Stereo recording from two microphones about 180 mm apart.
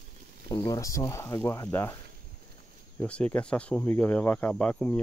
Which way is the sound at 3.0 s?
5° left (ahead or behind).